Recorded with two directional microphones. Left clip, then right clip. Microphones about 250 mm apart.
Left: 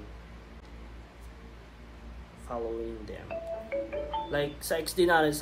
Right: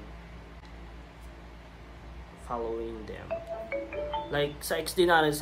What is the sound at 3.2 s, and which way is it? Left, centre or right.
Speech, centre.